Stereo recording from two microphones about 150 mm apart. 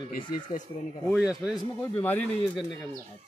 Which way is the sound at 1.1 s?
5° right (ahead or behind).